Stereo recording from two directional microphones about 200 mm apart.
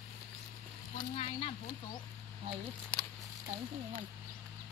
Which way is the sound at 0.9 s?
30° left (ahead or behind).